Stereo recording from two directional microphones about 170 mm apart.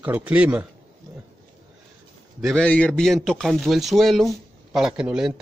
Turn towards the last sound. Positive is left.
turn(degrees=-5)  # may be behind; listen again after turning